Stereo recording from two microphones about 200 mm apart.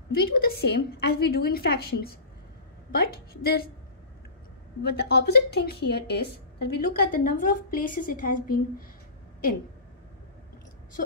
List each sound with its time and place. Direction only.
0.1 s a woman's voice: 50° left (ahead or behind)
4.8 s a woman's voice: 55° left (ahead or behind)